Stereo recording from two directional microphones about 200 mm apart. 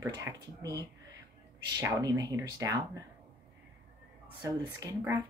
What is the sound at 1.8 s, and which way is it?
Speech, 20° right (ahead or behind).